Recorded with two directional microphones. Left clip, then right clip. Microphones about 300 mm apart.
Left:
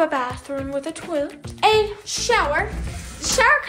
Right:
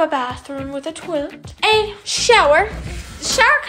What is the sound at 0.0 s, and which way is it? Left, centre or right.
A woman's voice, centre.